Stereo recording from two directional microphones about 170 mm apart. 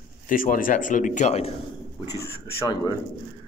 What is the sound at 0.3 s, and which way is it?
A man's voice, 55° left (ahead or behind).